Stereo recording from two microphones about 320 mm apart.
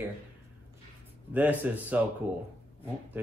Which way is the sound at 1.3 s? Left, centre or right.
Centre.